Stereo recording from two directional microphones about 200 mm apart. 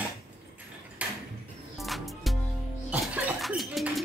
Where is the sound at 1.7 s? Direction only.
Centre (ahead or behind).